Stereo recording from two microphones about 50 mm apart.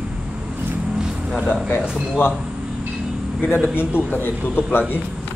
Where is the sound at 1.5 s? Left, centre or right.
Left.